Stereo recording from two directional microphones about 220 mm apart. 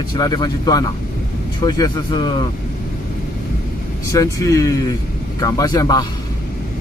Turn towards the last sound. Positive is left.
turn(degrees=15)  # may be behind; listen again after turning